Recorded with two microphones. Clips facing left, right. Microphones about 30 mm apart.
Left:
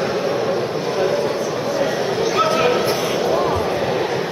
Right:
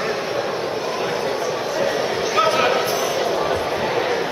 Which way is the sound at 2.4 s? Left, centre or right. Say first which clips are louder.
Right 1 dB; centre.